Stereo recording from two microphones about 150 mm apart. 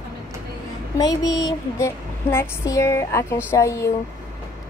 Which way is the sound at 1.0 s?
25° left (ahead or behind).